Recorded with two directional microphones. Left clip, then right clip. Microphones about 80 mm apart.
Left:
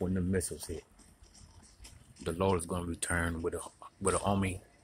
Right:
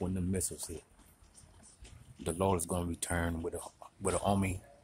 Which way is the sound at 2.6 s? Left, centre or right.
Right.